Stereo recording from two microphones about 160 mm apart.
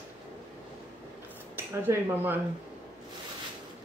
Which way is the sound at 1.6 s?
15° right (ahead or behind).